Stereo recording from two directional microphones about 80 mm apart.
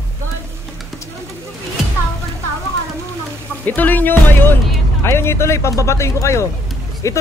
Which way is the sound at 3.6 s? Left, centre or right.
Left.